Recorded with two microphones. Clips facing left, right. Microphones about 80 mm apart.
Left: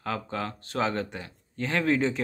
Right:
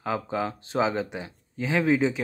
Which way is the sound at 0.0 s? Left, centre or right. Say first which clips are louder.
Right 4 dB; centre.